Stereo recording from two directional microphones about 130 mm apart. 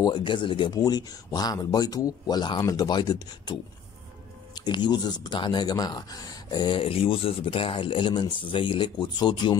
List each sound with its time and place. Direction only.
0.0 s speech: 35° left (ahead or behind)
4.6 s speech: 35° left (ahead or behind)